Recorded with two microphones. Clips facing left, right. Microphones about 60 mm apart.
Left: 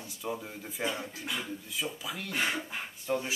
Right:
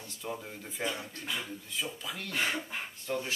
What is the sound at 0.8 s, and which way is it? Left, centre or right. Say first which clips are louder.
Speech: left 2 dB; centre.